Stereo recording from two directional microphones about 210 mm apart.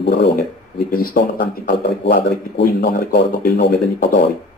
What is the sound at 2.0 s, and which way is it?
Speech, 50° left (ahead or behind).